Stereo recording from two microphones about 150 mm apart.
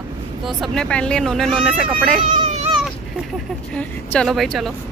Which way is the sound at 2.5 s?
40° right (ahead or behind).